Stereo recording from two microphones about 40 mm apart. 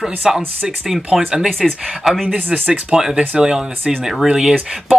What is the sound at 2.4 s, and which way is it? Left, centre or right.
Speech, right.